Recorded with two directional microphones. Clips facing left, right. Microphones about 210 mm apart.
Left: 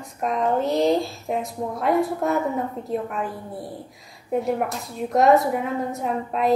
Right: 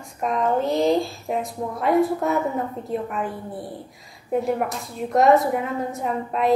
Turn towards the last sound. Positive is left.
turn(degrees=0)  # may be behind; listen again after turning